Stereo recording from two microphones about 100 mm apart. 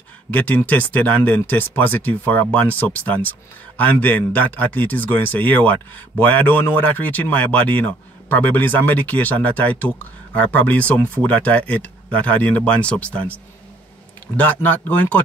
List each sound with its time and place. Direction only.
0.3 s speech: 15° left (ahead or behind)